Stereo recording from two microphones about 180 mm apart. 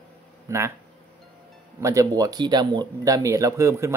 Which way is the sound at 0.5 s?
15° right (ahead or behind).